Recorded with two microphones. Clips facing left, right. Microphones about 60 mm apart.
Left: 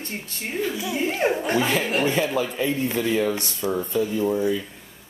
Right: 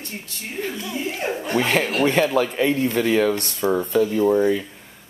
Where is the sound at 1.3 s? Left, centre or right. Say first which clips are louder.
Left 2 dB; centre.